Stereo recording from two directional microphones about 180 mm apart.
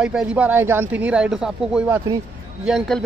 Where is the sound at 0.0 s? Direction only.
5° right (ahead or behind).